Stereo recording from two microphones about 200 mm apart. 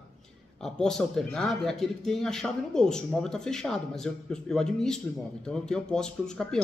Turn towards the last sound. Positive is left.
turn(degrees=5)  # may be behind; listen again after turning